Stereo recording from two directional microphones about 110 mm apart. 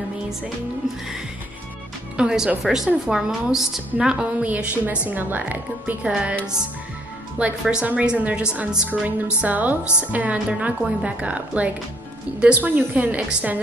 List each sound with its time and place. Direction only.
2.1 s a woman's voice: 5° right (ahead or behind)
7.3 s speech: 10° right (ahead or behind)